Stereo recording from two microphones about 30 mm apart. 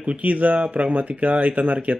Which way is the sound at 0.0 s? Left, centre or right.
Right.